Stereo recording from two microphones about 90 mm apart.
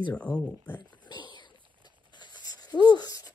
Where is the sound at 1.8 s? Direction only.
55° left (ahead or behind).